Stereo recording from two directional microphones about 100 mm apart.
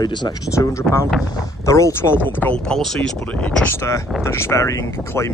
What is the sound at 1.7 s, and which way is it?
Speech, 30° left (ahead or behind).